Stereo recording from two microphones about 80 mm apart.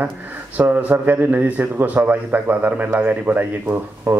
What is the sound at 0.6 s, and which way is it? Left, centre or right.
A man's voice, right.